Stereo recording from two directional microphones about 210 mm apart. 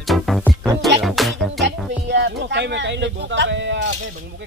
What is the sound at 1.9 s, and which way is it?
Speech, 55° right (ahead or behind).